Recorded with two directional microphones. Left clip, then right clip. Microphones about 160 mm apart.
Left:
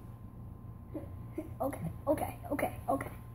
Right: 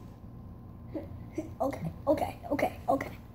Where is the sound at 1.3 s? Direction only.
10° left (ahead or behind).